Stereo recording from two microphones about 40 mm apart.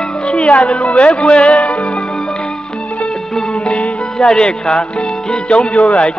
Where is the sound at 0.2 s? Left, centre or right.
Left.